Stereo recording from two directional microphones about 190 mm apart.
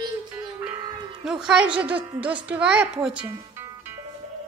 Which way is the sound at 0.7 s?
20° right (ahead or behind).